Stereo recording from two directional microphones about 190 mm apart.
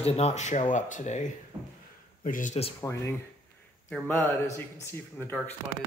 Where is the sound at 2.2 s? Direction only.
45° left (ahead or behind).